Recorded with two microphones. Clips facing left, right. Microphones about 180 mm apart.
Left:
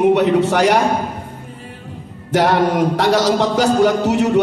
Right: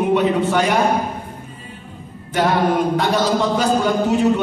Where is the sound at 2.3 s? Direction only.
75° left (ahead or behind).